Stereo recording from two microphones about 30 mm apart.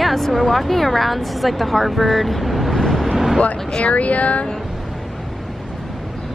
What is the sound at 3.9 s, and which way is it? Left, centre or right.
Speech, left.